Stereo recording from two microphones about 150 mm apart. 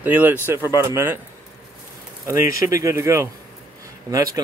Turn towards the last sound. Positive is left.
turn(degrees=-25)  # may be behind; listen again after turning